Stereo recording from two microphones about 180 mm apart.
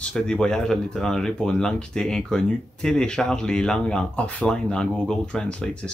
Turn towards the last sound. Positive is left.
turn(degrees=5)  # may be behind; listen again after turning